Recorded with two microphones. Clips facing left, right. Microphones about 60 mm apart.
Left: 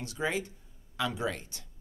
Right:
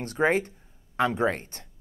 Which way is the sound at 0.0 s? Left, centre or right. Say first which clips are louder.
Right 9 dB; right.